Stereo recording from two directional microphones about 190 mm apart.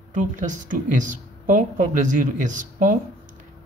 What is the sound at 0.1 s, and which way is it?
Speech, 40° right (ahead or behind).